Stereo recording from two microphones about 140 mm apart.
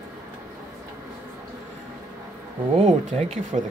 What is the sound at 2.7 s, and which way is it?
Speech, 55° right (ahead or behind).